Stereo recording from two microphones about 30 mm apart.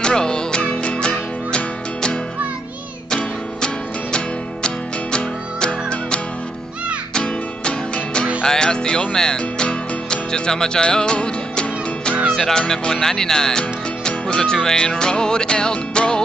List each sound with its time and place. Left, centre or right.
0.0 s music: left
4.6 s music: left
12.3 s speech: centre